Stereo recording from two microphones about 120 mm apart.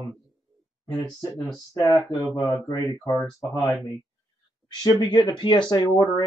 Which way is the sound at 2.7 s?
40° left (ahead or behind).